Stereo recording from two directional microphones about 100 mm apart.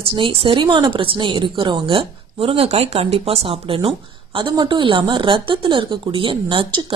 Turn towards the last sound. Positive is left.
turn(degrees=-60)  # may be behind; listen again after turning